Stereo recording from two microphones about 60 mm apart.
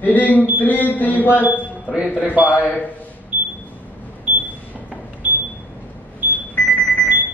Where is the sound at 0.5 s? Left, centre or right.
Left.